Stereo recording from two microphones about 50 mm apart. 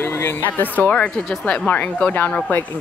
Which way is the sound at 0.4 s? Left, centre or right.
Left.